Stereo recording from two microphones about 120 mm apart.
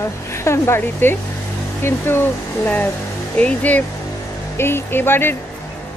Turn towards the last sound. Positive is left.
turn(degrees=20)  # may be behind; listen again after turning